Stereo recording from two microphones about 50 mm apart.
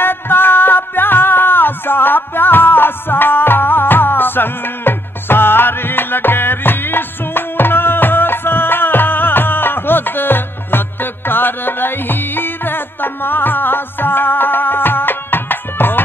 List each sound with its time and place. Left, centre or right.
0.0 s music: left